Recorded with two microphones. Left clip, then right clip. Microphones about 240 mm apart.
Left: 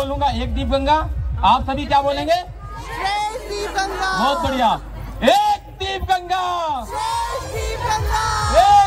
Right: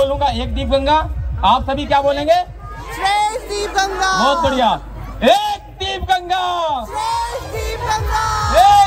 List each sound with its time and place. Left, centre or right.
0.0 s a man's voice: right
7.0 s music: centre
8.5 s music: right